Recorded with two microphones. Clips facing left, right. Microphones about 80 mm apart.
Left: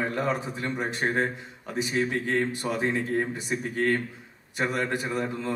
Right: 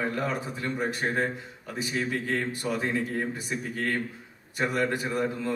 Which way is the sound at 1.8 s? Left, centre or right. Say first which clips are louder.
Left 2 dB; left.